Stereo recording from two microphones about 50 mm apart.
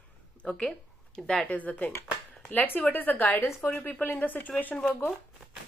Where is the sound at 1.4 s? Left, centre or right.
Left.